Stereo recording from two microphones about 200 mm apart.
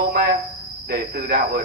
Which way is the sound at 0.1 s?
50° right (ahead or behind).